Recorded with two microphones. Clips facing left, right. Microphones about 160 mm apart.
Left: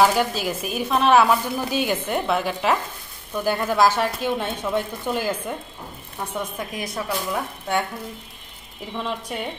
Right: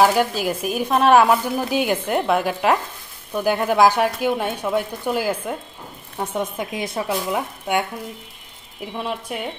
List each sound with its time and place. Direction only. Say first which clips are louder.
0.0 s speech: right 2 dB; 10° right (ahead or behind)
6.1 s speech: right 4 dB; 20° right (ahead or behind)
8.9 s speech: right 1 dB; 5° right (ahead or behind)